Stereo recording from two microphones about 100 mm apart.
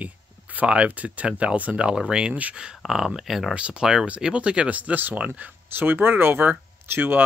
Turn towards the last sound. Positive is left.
turn(degrees=-20)  # may be behind; listen again after turning